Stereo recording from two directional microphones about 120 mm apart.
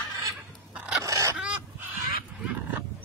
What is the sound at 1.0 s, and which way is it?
Fowl, 25° right (ahead or behind).